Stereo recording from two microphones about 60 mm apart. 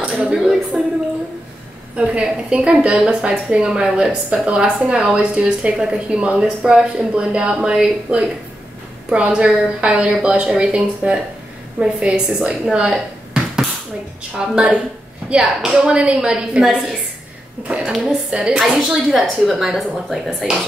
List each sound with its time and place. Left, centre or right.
0.1 s a woman's voice: centre
0.7 s speech: centre
2.0 s a woman's voice: centre
6.4 s a woman's voice: centre
14.4 s a woman's voice: centre
17.6 s a woman's voice: centre